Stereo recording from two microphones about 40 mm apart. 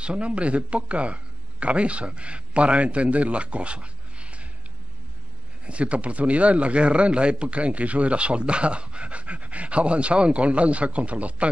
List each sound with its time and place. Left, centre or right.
0.0 s a man's voice: right
5.7 s a man's voice: right